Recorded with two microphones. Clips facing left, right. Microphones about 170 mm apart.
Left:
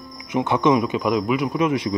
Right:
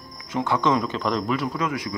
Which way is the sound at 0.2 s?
20° left (ahead or behind).